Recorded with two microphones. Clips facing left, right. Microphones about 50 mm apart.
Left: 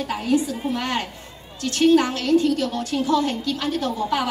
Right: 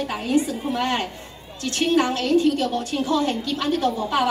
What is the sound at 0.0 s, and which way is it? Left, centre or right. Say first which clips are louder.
A woman's voice: even; right.